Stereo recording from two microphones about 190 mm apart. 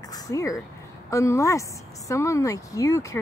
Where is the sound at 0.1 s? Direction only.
15° left (ahead or behind).